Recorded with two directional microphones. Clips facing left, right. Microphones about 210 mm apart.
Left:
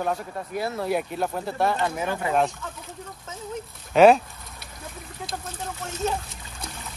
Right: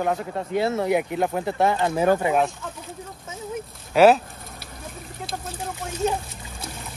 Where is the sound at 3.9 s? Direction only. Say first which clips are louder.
Even; centre (ahead or behind).